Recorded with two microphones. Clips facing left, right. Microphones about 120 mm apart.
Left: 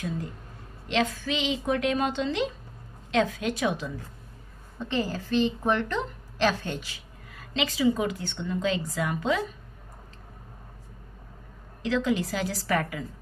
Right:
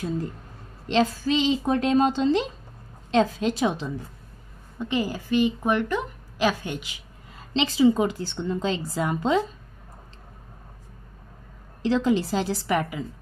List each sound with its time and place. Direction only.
0.8 s a woman's voice: 35° right (ahead or behind)
4.7 s a woman's voice: 15° right (ahead or behind); by 9.4 s 30° right (ahead or behind)
11.8 s a woman's voice: 30° right (ahead or behind)